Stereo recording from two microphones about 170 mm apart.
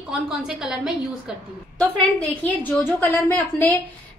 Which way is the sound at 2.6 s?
10° left (ahead or behind).